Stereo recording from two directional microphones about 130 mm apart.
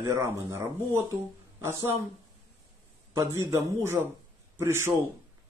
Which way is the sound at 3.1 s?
20° right (ahead or behind).